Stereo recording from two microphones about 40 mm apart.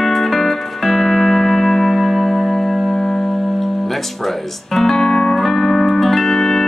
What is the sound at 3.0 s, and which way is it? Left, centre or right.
Music, centre.